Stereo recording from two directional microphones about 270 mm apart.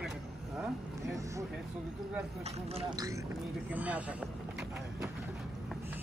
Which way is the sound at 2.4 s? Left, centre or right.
Right.